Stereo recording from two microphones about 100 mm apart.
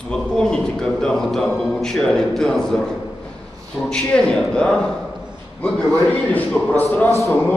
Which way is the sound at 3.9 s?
10° left (ahead or behind).